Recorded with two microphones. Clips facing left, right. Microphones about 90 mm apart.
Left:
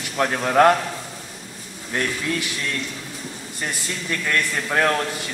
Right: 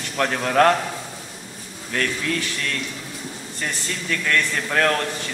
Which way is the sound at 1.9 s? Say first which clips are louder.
Even; 15° left (ahead or behind).